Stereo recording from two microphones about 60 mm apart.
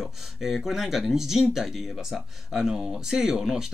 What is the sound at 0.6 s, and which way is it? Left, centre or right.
Speech, centre.